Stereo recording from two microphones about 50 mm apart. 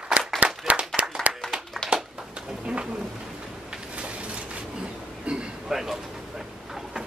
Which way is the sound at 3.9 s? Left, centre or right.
Right.